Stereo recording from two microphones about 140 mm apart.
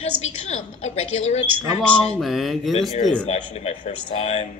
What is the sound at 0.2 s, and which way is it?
A man's voice, 50° left (ahead or behind).